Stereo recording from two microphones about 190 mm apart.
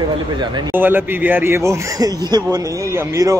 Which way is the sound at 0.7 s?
10° right (ahead or behind).